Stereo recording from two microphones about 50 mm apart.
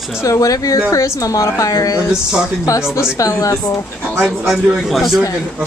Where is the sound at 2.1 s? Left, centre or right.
Centre.